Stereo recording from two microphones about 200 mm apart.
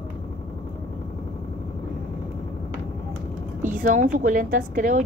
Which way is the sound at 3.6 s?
40° right (ahead or behind).